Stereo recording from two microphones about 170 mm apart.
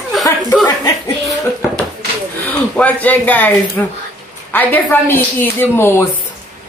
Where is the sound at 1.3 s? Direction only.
Centre (ahead or behind).